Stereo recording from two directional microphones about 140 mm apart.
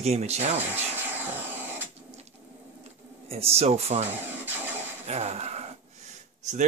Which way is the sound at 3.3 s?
45° right (ahead or behind).